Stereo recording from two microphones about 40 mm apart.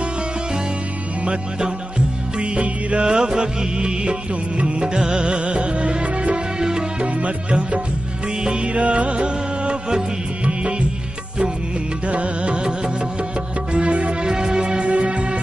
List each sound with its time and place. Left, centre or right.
1.2 s music: right
3.1 s music: centre
12.1 s music: right
13.7 s music: right
14.3 s music: centre